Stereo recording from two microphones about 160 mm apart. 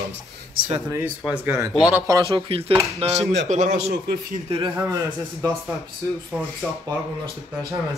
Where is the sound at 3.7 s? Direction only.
90° right.